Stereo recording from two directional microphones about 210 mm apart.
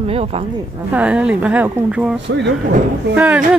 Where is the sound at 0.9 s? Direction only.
5° right (ahead or behind).